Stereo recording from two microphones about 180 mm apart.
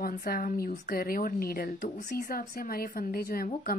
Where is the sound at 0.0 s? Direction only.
55° left (ahead or behind).